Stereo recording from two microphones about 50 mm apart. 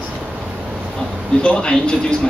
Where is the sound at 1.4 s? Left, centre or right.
Centre.